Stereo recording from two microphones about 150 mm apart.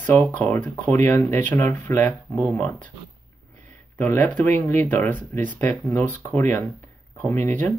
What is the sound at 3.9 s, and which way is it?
Speech, 15° left (ahead or behind).